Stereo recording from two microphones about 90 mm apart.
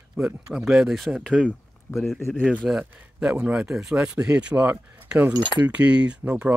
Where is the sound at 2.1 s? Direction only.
25° left (ahead or behind).